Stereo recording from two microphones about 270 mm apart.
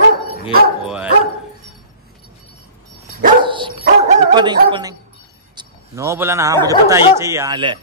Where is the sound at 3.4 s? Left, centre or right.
Centre.